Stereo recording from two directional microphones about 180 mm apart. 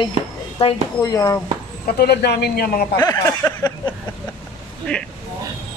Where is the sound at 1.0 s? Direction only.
20° left (ahead or behind).